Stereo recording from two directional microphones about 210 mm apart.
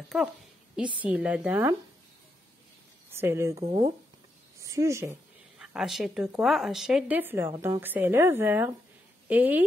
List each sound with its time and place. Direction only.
0.1 s a woman's voice: 10° right (ahead or behind)
3.1 s speech: 10° right (ahead or behind)
5.6 s a woman's voice: centre (ahead or behind)